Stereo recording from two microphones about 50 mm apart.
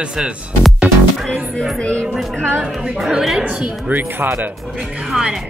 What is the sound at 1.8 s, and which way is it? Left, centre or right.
Speech, left.